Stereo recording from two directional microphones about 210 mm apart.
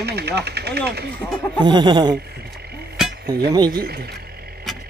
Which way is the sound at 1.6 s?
20° right (ahead or behind).